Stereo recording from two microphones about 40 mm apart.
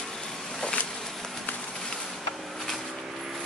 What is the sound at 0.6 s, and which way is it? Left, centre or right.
Insect, left.